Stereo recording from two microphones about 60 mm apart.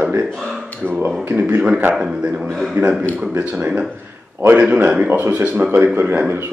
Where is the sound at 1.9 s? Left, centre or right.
Centre.